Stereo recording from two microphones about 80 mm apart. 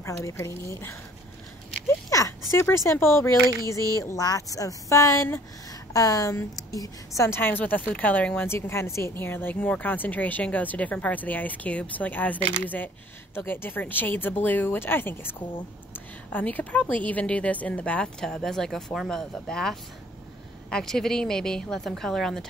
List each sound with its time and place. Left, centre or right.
0.0 s speech: left
2.0 s speech: left
5.9 s a woman's voice: left
7.2 s speech: left
8.5 s a woman's voice: left; by 22.5 s centre